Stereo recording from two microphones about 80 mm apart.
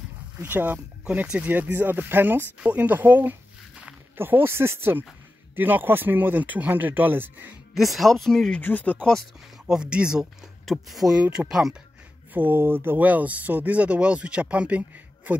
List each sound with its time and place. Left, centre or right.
0.4 s speech: right
1.0 s speech: centre
7.7 s speech: centre
8.5 s speech: centre
9.7 s speech: centre
10.6 s speech: centre
12.4 s speech: right